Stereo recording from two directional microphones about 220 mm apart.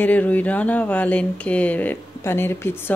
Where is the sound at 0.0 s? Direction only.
5° left (ahead or behind).